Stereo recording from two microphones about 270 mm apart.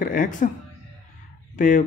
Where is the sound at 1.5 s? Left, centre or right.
Left.